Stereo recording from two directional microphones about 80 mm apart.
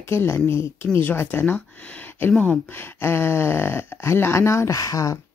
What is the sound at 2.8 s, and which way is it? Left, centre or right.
Speech, left.